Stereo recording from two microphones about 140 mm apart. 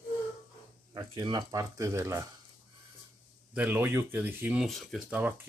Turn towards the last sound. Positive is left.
turn(degrees=-10)  # may be behind; listen again after turning